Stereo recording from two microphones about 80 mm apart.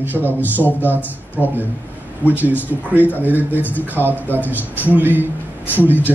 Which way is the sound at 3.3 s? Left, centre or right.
Left.